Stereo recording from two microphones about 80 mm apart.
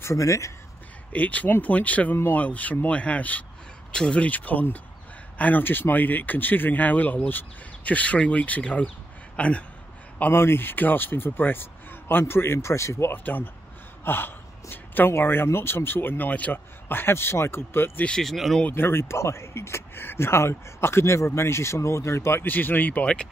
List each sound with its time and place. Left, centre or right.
0.0 s speech: left
1.1 s speech: centre
10.1 s speech: left
13.1 s speech: left
18.0 s speech: centre
18.7 s speech: left